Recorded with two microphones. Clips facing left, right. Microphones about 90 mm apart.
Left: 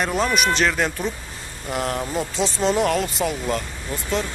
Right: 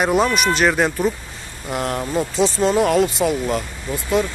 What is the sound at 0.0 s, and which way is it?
Speech, 5° right (ahead or behind).